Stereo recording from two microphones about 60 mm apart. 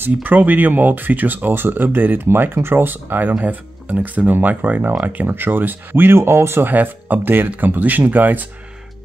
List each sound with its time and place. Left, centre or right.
0.0 s speech: right
6.7 s speech: right